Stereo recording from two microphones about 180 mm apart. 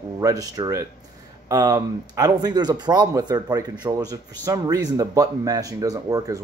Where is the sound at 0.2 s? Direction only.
20° right (ahead or behind).